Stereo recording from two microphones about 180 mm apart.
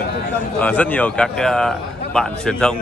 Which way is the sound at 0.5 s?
5° left (ahead or behind).